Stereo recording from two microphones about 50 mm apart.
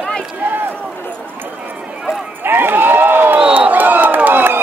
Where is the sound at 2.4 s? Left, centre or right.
Right.